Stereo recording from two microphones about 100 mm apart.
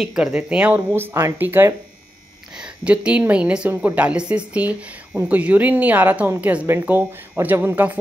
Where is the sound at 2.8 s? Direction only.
10° right (ahead or behind).